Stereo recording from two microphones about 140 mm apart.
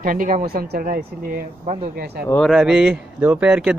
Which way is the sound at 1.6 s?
50° right (ahead or behind).